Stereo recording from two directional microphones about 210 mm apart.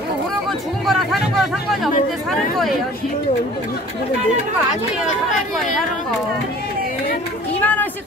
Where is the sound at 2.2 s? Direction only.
Centre (ahead or behind).